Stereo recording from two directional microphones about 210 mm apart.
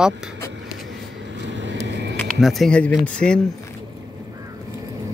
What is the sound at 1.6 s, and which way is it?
Vehicle, 55° right (ahead or behind).